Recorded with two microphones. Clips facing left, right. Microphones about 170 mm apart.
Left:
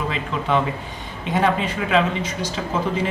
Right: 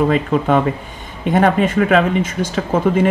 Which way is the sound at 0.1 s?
50° right (ahead or behind).